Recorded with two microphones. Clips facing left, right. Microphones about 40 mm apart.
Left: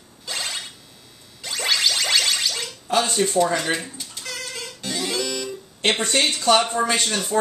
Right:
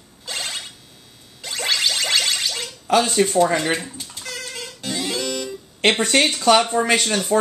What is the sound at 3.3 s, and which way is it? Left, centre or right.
Speech, right.